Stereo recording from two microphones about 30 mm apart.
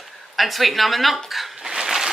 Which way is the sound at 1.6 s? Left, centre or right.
Centre.